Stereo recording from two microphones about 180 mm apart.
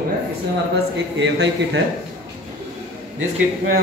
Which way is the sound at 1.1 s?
75° right (ahead or behind).